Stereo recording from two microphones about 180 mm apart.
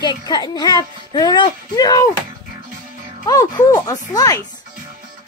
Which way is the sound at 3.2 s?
20° left (ahead or behind).